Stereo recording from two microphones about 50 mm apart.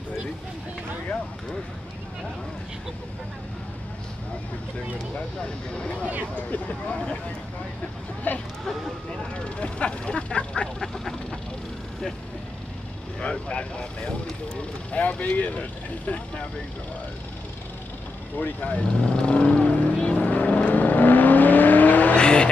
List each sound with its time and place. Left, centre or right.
5.4 s speech: left
8.3 s a sound: left
9.1 s vehicle: centre
13.2 s vehicle: left
14.9 s speech: left
18.4 s speech: left
20.0 s vehicle: left
22.1 s vehicle: centre